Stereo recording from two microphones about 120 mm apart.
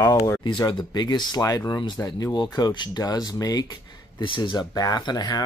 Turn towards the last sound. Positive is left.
turn(degrees=35)  # may be behind; listen again after turning